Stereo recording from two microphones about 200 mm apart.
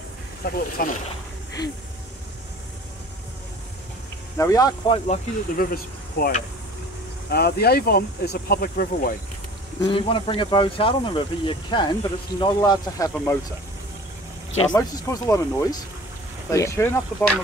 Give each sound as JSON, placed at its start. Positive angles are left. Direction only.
{"t": 0.5, "sound": "speech", "side_deg": 45}
{"t": 4.4, "sound": "speech", "side_deg": 15}
{"t": 9.8, "sound": "speech", "side_deg": 25}
{"t": 14.8, "sound": "speech", "side_deg": 15}